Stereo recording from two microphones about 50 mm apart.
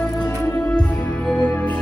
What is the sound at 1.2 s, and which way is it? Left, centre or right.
Music, left.